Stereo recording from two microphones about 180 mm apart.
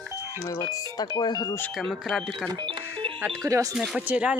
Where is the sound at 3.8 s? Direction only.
5° right (ahead or behind).